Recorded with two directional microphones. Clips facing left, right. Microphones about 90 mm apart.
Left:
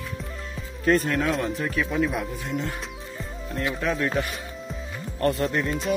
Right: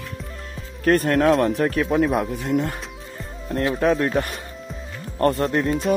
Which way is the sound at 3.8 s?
45° right (ahead or behind).